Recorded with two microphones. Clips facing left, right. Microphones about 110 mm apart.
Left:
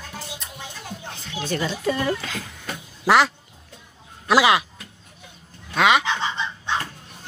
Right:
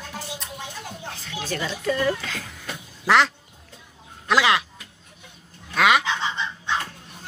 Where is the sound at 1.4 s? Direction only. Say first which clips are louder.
Left 3 dB; centre (ahead or behind).